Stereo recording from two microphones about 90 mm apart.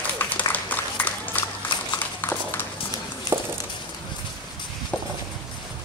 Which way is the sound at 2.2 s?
25° left (ahead or behind).